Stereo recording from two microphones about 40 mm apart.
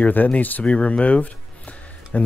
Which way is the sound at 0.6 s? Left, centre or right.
Left.